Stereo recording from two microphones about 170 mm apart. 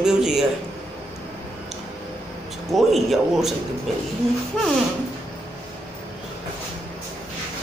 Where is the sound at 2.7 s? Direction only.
Centre (ahead or behind).